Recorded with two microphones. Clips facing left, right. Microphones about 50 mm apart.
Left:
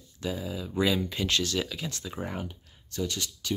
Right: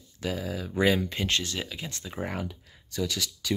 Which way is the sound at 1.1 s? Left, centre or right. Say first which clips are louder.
Left 1 dB; right.